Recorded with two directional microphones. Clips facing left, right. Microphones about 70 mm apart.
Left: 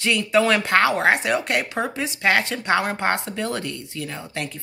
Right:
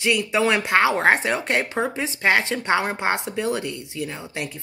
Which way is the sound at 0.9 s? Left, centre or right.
Right.